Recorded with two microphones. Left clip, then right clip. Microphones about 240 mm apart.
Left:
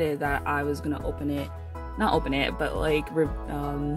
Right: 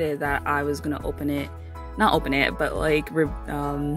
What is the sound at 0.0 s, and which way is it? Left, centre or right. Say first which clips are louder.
Speech: right 2 dB; centre.